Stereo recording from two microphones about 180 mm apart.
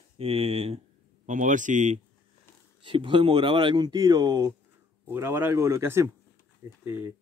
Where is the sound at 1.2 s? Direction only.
45° right (ahead or behind).